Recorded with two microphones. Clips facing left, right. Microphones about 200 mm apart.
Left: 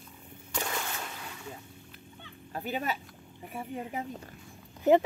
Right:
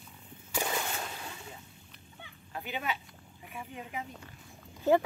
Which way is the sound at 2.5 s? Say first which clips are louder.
Left 3 dB; 40° left (ahead or behind).